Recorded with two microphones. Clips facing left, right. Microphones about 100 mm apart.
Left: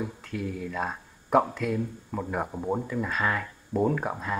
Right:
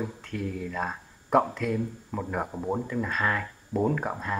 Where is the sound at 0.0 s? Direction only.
Centre (ahead or behind).